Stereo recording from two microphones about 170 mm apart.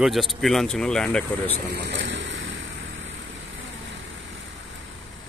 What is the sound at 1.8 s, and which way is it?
Vehicle, 90° right.